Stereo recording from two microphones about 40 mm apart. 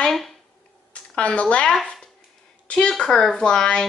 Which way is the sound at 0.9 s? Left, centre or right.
Left.